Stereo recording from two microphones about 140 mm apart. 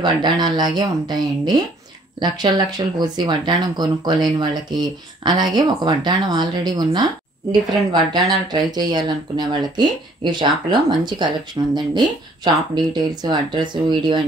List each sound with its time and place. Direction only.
0.0 s speech: 30° right (ahead or behind)